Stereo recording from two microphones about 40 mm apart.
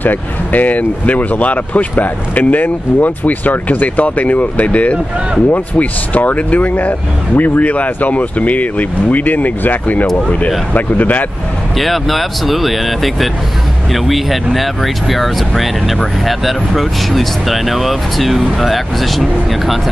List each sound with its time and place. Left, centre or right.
0.0 s speech: left
11.7 s speech: centre